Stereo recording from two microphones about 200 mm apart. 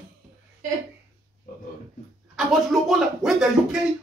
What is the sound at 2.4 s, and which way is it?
Speech, centre (ahead or behind).